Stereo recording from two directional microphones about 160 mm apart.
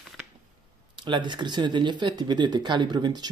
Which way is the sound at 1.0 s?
30° right (ahead or behind).